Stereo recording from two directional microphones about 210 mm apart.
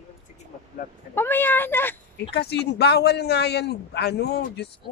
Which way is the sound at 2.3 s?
50° left (ahead or behind).